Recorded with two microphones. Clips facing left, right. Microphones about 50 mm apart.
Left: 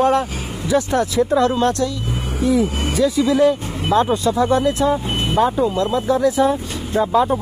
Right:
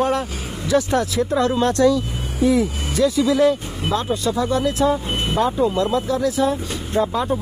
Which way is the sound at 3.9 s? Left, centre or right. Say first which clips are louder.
Left 5 dB; left.